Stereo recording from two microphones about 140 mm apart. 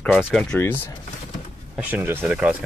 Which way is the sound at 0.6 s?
20° left (ahead or behind).